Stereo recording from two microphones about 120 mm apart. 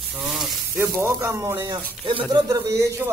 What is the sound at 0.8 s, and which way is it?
Speech, 25° right (ahead or behind).